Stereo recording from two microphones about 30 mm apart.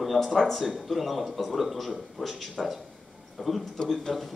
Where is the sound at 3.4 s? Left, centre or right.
Centre.